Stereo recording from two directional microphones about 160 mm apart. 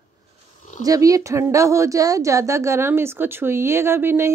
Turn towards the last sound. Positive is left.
turn(degrees=-15)  # may be behind; listen again after turning